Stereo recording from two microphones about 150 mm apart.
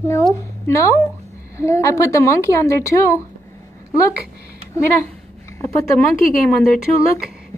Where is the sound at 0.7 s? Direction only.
20° left (ahead or behind).